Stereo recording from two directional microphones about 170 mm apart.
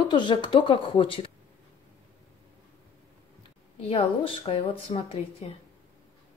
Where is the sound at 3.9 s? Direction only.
35° left (ahead or behind).